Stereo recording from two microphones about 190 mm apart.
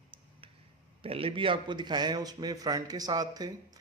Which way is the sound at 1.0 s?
30° right (ahead or behind).